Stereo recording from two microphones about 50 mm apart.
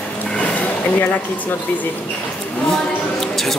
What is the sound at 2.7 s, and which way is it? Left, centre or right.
Speech, centre.